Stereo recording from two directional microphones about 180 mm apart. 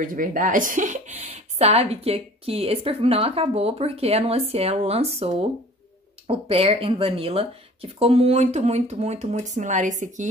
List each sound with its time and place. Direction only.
0.0 s speech: 50° right (ahead or behind)